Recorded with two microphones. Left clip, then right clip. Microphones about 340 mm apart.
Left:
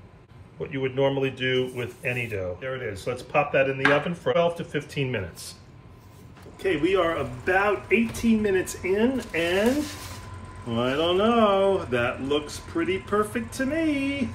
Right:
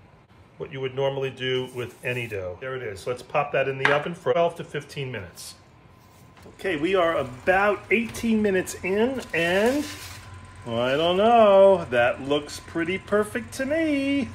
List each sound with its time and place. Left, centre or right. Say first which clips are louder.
0.6 s speech: left 2 dB; centre
6.6 s speech: even; right
10.7 s speech: right 2 dB; right